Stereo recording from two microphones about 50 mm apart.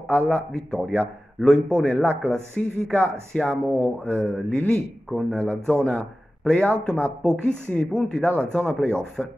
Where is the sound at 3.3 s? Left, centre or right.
Left.